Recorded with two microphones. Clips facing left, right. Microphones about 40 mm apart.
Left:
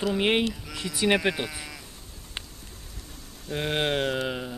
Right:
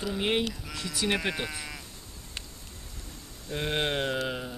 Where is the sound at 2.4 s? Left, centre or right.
Left.